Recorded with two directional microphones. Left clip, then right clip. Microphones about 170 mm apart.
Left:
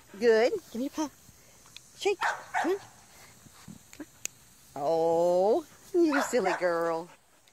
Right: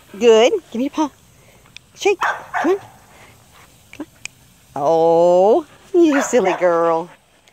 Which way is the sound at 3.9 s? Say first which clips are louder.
Right 10 dB; 5° right (ahead or behind).